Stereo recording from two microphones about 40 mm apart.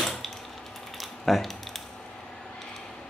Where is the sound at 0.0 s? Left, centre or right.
Centre.